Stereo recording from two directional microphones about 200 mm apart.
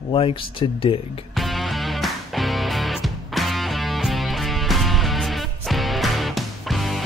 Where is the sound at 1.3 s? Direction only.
Centre (ahead or behind).